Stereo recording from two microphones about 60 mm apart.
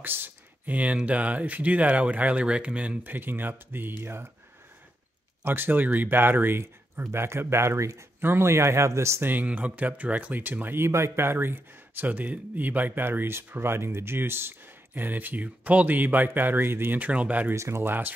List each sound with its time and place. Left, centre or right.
0.0 s a sound: right
1.0 s speech: right
3.0 s speech: right
5.4 s speech: right
6.6 s speech: right
8.2 s speech: right
9.2 s speech: right
17.0 s speech: right
17.6 s speech: right
17.8 s speech: right